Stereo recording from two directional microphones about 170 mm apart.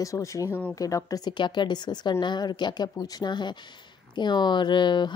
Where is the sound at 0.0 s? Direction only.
20° left (ahead or behind).